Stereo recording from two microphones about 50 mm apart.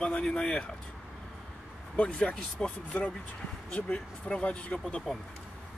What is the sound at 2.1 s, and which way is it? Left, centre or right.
Speech, left.